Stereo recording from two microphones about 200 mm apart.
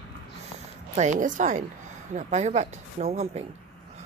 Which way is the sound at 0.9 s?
35° right (ahead or behind).